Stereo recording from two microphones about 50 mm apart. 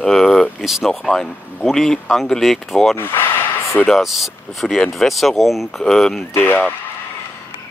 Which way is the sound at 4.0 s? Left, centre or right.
Centre.